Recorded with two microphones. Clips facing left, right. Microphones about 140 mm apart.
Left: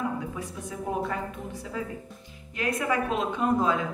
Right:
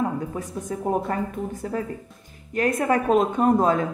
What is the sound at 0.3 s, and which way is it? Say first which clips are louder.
A woman's voice: right 6 dB; 45° right (ahead or behind).